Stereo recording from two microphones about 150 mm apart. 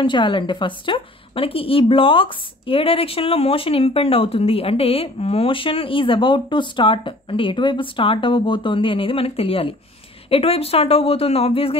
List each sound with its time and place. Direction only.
0.0 s a woman's voice: 35° left (ahead or behind)